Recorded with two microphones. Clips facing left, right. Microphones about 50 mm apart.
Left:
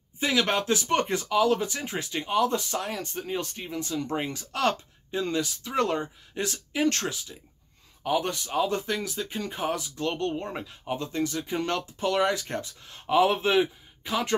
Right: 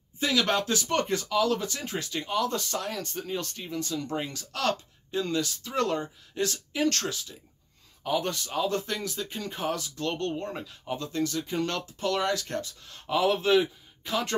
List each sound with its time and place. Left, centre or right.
0.2 s speech: left